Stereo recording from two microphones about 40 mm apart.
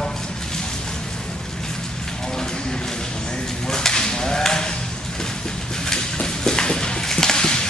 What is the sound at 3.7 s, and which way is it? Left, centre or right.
Whip, centre.